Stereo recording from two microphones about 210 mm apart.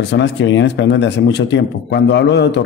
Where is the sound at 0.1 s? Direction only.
55° left (ahead or behind).